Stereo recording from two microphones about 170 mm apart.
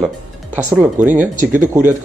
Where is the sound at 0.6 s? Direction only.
10° right (ahead or behind).